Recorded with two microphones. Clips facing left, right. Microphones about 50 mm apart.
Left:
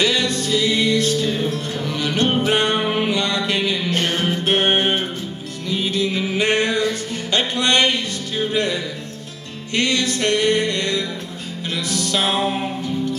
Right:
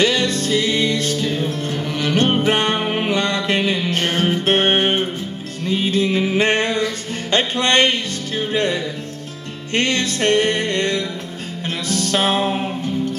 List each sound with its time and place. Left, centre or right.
0.0 s music: right
2.8 s music: right